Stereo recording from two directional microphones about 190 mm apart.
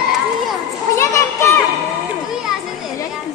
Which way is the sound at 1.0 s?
15° left (ahead or behind).